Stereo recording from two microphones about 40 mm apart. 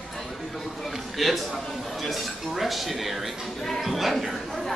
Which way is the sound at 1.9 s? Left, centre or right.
Centre.